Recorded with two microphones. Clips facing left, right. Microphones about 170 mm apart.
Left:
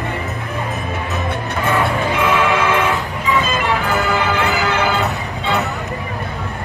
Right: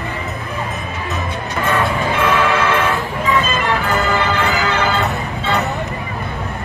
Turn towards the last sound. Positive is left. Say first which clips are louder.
# right 1 dB
turn(degrees=15)  # may be behind; listen again after turning